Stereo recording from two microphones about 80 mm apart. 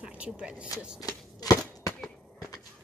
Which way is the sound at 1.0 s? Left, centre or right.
Left.